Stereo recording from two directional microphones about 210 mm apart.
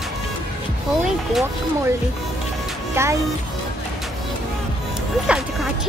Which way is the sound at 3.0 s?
10° right (ahead or behind).